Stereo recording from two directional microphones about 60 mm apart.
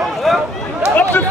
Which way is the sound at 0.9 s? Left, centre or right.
Left.